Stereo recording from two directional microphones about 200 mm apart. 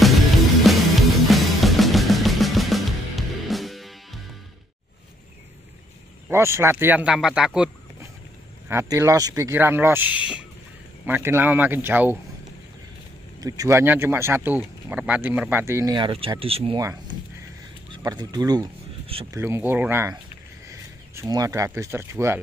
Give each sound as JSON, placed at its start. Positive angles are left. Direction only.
{"t": 0.7, "sound": "music", "side_deg": 0}
{"t": 6.2, "sound": "speech", "side_deg": -10}
{"t": 13.4, "sound": "speech", "side_deg": -15}
{"t": 17.9, "sound": "speech", "side_deg": -20}
{"t": 19.3, "sound": "speech", "side_deg": -10}